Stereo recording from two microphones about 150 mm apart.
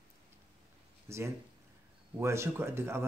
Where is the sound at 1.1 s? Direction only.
20° right (ahead or behind).